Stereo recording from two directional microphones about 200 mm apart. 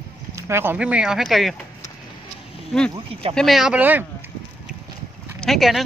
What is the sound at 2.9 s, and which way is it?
Speech, 30° right (ahead or behind).